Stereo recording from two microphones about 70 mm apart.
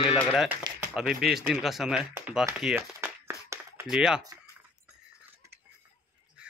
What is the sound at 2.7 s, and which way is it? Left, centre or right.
Crumpling, right.